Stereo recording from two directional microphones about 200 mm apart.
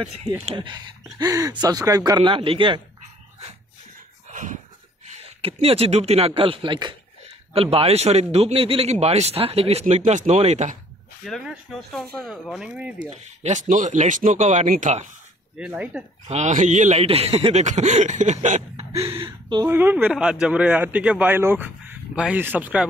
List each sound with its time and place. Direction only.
0.5 s speech: 20° right (ahead or behind)
4.3 s a sound: 40° right (ahead or behind)
5.0 s speech: 30° right (ahead or behind)
11.2 s speech: centre (ahead or behind)
13.1 s speech: 35° right (ahead or behind)
15.5 s speech: 5° right (ahead or behind)
16.3 s speech: 35° right (ahead or behind)
19.7 s speech: 10° right (ahead or behind)